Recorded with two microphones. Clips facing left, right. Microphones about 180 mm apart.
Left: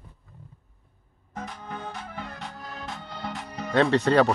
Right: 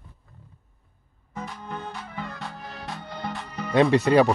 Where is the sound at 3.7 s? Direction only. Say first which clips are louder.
Right 2 dB; 10° right (ahead or behind).